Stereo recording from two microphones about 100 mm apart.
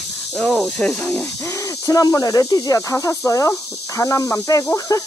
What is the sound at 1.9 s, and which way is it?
Speech, 35° left (ahead or behind).